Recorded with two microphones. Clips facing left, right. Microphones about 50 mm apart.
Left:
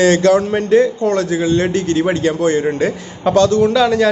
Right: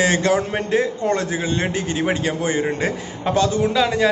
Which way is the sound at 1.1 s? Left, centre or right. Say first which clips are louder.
Left 6 dB; right.